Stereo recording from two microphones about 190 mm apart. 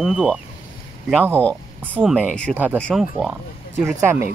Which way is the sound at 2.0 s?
5° right (ahead or behind).